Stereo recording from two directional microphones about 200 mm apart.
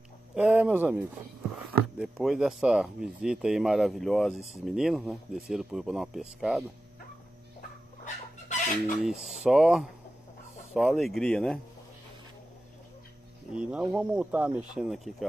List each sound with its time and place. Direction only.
0.3 s speech: 5° right (ahead or behind)
4.3 s speech: 35° left (ahead or behind)
4.6 s speech: centre (ahead or behind)
8.0 s chicken: 35° left (ahead or behind)
9.0 s speech: centre (ahead or behind)
13.5 s speech: 5° right (ahead or behind)